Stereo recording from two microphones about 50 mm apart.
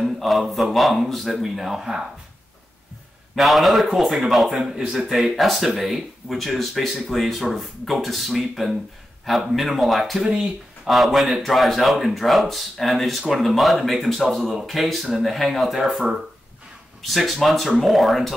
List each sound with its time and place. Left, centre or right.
0.0 s speech: centre
3.3 s speech: centre
4.8 s speech: centre
5.1 s speech: centre
15.8 s speech: centre